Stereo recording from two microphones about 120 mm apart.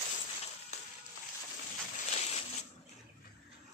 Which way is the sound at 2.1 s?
60° left (ahead or behind).